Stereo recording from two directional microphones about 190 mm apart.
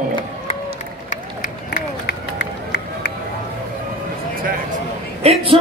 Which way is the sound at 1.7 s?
65° left (ahead or behind).